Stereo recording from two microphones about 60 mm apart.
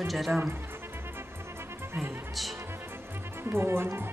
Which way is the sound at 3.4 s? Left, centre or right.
Right.